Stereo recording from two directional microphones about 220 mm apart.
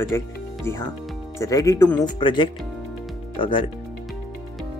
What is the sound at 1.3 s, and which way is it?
Speech, 15° left (ahead or behind).